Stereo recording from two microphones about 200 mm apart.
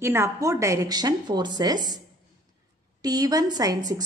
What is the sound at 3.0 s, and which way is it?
Speech, 20° right (ahead or behind).